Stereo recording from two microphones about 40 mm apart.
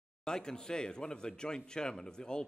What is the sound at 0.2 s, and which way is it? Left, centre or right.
A man's voice, centre.